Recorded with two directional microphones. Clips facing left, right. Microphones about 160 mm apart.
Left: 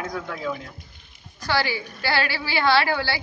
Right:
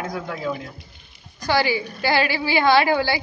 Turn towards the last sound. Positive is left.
turn(degrees=-15)  # may be behind; listen again after turning